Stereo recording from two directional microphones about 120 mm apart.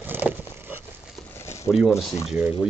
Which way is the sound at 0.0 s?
15° right (ahead or behind).